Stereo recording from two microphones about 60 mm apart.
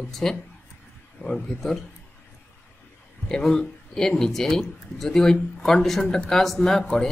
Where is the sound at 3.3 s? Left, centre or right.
Centre.